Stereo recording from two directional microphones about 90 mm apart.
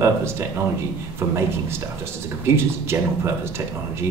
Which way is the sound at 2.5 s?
30° right (ahead or behind).